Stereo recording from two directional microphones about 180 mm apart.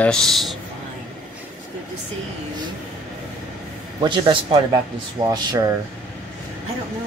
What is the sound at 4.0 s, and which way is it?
A man's voice, 25° right (ahead or behind).